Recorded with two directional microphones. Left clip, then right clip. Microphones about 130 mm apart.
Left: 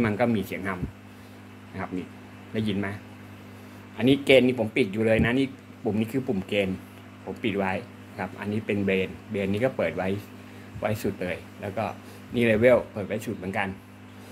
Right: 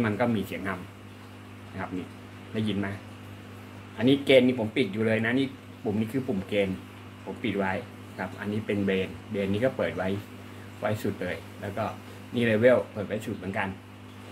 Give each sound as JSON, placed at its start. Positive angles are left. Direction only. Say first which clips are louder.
{"t": 0.0, "sound": "speech", "louder": "left 2 dB", "side_deg": 60}
{"t": 1.8, "sound": "speech", "louder": "left 1 dB", "side_deg": 65}
{"t": 4.0, "sound": "speech", "louder": "left 1 dB", "side_deg": 60}
{"t": 6.1, "sound": "speech", "louder": "left 2 dB", "side_deg": 75}
{"t": 6.5, "sound": "speech", "louder": "even", "side_deg": 60}